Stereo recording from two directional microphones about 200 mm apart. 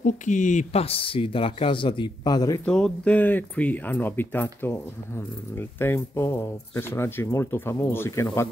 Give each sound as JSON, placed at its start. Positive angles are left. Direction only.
{"t": 0.0, "sound": "speech", "side_deg": 40}
{"t": 2.6, "sound": "speech", "side_deg": 5}